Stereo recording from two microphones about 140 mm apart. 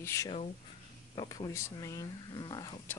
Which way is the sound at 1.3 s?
20° left (ahead or behind).